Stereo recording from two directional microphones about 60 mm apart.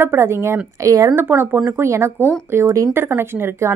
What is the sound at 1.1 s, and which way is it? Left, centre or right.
A woman's voice, right.